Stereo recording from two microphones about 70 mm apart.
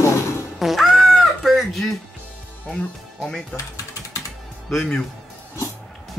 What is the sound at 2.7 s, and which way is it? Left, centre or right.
Speech, centre.